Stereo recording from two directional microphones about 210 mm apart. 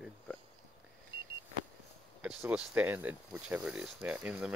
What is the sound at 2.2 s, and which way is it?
Speech, 5° right (ahead or behind).